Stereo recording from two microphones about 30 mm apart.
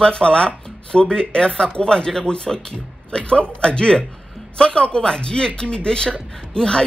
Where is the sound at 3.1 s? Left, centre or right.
Left.